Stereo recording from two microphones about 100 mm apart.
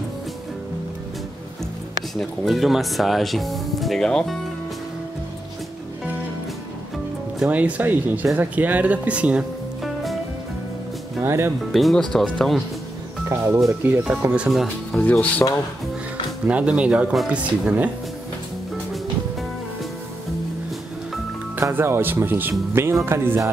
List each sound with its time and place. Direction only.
2.1 s speech: centre (ahead or behind)
7.3 s speech: 15° right (ahead or behind)
11.1 s speech: 25° right (ahead or behind)
11.7 s speech: centre (ahead or behind)
13.3 s speech: 25° right (ahead or behind)
14.0 s speech: 15° right (ahead or behind)
14.5 s speech: centre (ahead or behind)
15.0 s speech: 15° left (ahead or behind)
16.4 s speech: 10° right (ahead or behind)
21.5 s speech: 25° right (ahead or behind)